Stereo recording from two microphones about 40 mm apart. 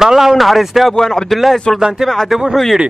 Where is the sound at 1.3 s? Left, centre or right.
Centre.